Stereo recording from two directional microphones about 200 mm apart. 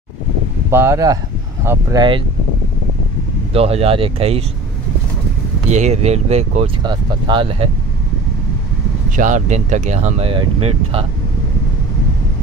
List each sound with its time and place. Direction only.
0.7 s speech: 10° right (ahead or behind)
3.5 s speech: 30° right (ahead or behind)
5.7 s speech: 35° right (ahead or behind)
9.1 s speech: 40° right (ahead or behind)